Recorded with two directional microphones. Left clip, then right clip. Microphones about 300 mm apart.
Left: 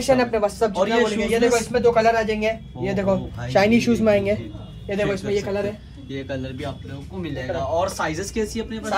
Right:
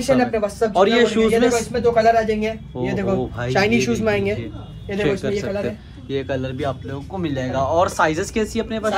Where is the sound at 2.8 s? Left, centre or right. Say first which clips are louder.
Right 2 dB; left.